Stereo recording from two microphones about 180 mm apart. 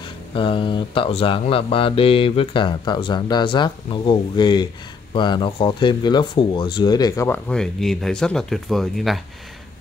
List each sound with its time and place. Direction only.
0.3 s mantra: 30° left (ahead or behind)
5.1 s speech: 25° left (ahead or behind); by 9.2 s centre (ahead or behind)